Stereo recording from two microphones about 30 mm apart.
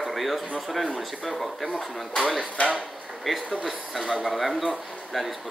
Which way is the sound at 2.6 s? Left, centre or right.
Left.